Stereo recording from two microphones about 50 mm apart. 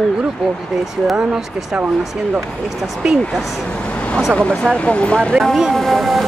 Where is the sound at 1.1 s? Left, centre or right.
Centre.